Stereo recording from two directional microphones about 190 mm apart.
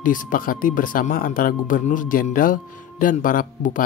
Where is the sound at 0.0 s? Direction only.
45° left (ahead or behind).